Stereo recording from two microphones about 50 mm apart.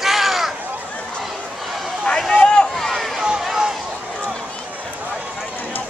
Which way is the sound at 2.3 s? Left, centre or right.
Centre.